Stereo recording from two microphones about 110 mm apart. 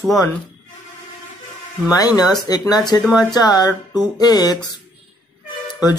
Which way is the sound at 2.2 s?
35° left (ahead or behind).